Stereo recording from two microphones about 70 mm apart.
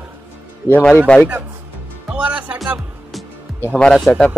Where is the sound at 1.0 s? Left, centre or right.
Centre.